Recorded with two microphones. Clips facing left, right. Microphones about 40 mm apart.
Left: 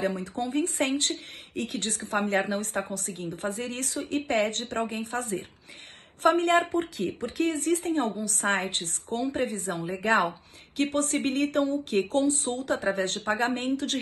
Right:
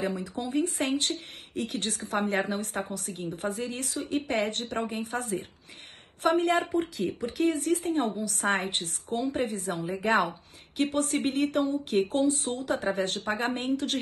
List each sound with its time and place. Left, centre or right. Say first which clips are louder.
0.0 s a woman's voice: left 2 dB; left